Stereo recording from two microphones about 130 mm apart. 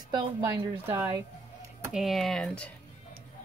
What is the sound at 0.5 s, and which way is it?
Speech, 20° right (ahead or behind).